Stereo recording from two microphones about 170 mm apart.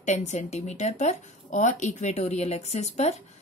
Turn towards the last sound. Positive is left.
turn(degrees=40)  # may be behind; listen again after turning